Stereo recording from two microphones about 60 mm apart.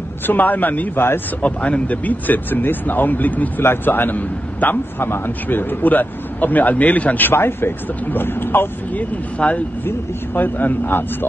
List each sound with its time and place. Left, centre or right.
0.3 s a man's voice: left
9.4 s speech: centre
9.8 s a man's voice: left